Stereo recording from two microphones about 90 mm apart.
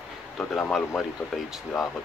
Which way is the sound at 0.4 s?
15° left (ahead or behind).